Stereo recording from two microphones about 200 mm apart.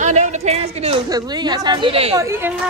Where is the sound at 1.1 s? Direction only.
20° right (ahead or behind).